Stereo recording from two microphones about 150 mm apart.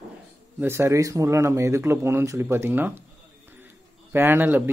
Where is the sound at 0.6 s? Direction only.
15° right (ahead or behind).